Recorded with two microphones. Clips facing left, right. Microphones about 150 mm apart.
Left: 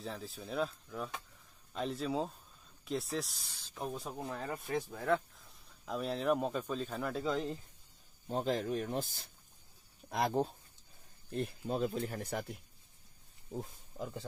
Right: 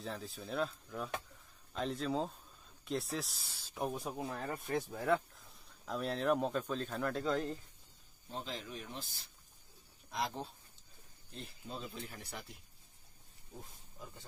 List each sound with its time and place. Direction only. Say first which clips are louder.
0.0 s speech: even; centre (ahead or behind); by 4.1 s 15° right (ahead or behind)
4.1 s speech: even; centre (ahead or behind)
8.3 s speech: left 10 dB; 45° left (ahead or behind)
13.6 s speech: left 10 dB; 90° left